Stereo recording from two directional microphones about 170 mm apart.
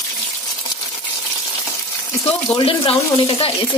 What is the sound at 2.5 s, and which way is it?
Speech, 30° left (ahead or behind).